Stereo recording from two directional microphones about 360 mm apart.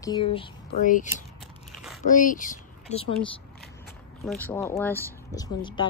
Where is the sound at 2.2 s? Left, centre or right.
Left.